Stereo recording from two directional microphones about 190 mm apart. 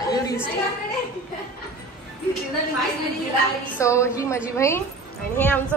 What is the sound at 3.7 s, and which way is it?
A woman's voice, 15° left (ahead or behind).